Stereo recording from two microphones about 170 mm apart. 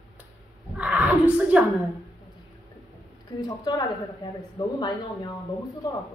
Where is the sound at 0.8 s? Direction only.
10° right (ahead or behind).